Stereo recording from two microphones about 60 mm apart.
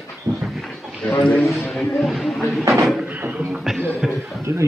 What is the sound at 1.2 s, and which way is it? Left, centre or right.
A man's voice, centre.